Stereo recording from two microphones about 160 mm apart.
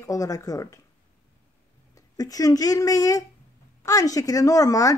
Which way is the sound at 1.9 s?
20° left (ahead or behind).